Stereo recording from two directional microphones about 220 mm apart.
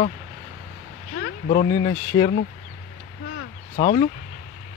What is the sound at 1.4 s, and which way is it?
Speech, 35° left (ahead or behind).